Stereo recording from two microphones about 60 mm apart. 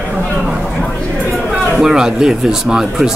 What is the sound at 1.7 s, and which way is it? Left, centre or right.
Speech, centre.